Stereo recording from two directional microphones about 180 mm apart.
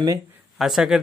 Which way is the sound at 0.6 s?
Centre (ahead or behind).